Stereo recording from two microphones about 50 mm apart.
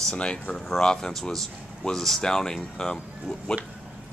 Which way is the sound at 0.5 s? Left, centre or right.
Centre.